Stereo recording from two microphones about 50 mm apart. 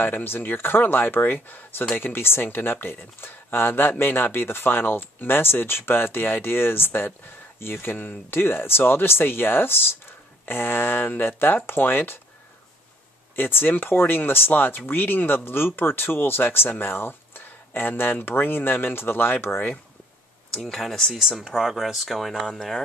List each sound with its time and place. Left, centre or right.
0.0 s speech: left
13.4 s speech: left
20.5 s speech: centre
21.1 s speech: centre